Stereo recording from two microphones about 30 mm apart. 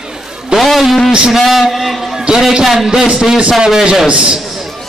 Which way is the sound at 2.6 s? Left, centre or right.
Centre.